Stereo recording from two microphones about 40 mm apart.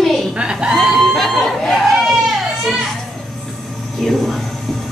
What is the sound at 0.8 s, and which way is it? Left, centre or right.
Speech, centre.